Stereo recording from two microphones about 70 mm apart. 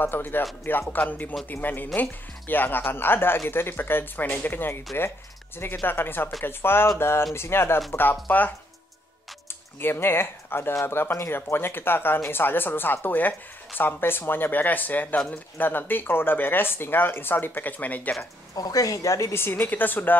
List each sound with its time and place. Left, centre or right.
0.0 s speech: left
5.9 s speech: left
9.8 s speech: left
18.5 s speech: left
19.3 s speech: left